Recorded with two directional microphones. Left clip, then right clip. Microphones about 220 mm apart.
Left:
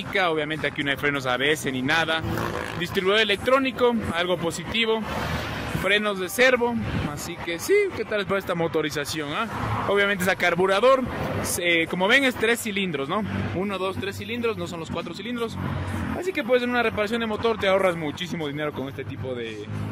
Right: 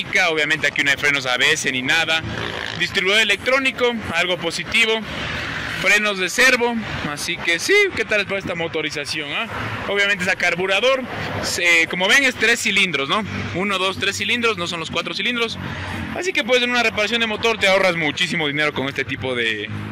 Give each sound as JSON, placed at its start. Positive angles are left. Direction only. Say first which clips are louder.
{"t": 0.1, "sound": "speech", "louder": "right 6 dB", "side_deg": 10}
{"t": 8.2, "sound": "speech", "louder": "right 2 dB", "side_deg": 25}
{"t": 9.8, "sound": "speech", "louder": "right 3 dB", "side_deg": 20}